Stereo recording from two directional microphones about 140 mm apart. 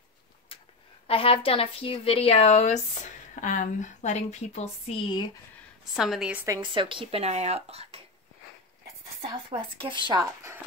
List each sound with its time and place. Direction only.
0.5 s a sound: 40° left (ahead or behind)
1.0 s a woman's voice: 40° left (ahead or behind)
5.9 s a woman's voice: 5° right (ahead or behind)
6.6 s speech: 35° right (ahead or behind)
9.5 s speech: 40° right (ahead or behind)